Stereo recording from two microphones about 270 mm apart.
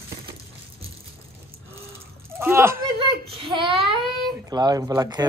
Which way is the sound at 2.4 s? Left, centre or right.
Centre.